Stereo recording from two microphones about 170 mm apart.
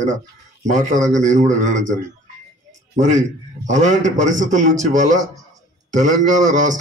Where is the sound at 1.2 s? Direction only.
45° right (ahead or behind).